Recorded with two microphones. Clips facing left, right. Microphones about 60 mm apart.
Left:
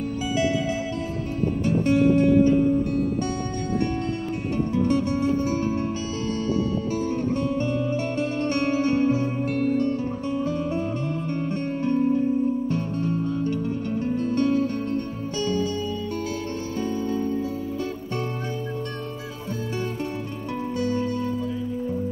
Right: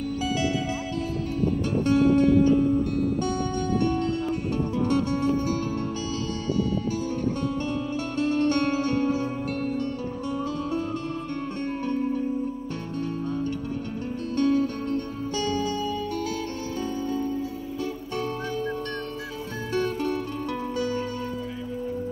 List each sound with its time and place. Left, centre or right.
1.6 s music: left
4.8 s music: left
7.0 s music: left
12.7 s music: left